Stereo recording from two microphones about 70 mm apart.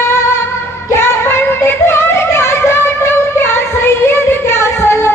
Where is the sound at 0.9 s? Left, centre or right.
Left.